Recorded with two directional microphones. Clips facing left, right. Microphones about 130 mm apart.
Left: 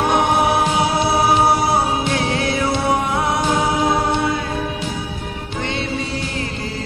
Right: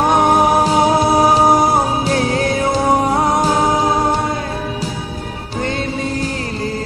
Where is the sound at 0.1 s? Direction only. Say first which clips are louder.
Right 4 dB; 40° right (ahead or behind).